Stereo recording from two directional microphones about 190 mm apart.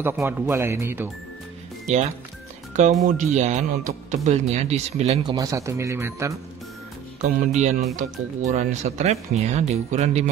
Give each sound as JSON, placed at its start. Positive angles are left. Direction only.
{"t": 0.0, "sound": "speech", "side_deg": -10}
{"t": 1.9, "sound": "speech", "side_deg": -35}
{"t": 5.2, "sound": "speech", "side_deg": -20}
{"t": 7.2, "sound": "speech", "side_deg": -40}